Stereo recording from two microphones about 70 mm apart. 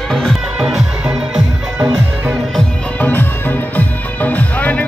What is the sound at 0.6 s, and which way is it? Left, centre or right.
Music, centre.